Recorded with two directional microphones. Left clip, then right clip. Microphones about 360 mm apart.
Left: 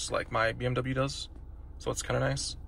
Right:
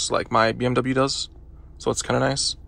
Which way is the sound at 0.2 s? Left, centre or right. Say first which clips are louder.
Right 9 dB; right.